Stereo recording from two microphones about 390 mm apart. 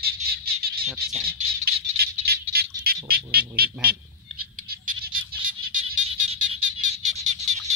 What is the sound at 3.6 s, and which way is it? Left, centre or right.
Fowl, right.